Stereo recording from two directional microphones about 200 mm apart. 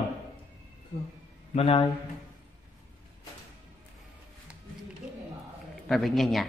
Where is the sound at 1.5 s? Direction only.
30° left (ahead or behind).